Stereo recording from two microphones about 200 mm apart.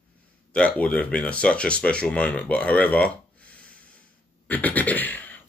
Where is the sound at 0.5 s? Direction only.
5° left (ahead or behind).